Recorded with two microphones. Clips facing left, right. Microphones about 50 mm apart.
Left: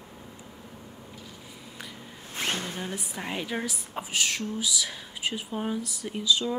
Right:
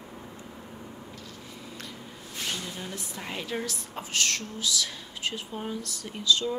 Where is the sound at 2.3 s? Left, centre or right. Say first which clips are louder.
Left 4 dB; left.